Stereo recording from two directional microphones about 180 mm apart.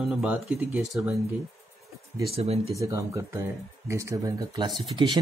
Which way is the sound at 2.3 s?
35° right (ahead or behind).